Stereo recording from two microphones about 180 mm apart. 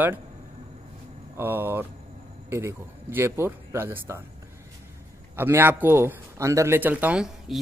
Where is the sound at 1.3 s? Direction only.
10° right (ahead or behind).